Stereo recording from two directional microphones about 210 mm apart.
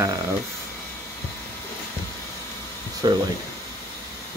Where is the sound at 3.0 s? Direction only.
20° right (ahead or behind).